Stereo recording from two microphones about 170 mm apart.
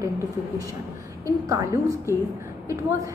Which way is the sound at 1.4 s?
20° right (ahead or behind).